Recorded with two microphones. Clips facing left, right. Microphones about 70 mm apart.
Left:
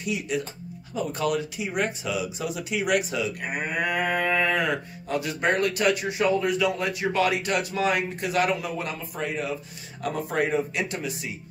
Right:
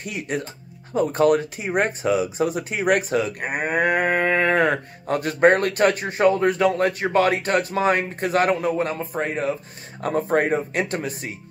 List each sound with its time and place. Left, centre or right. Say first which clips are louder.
0.0 s speech: even; right